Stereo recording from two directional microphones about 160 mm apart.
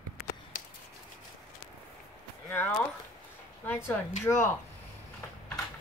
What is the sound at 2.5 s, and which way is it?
Speech, 10° left (ahead or behind).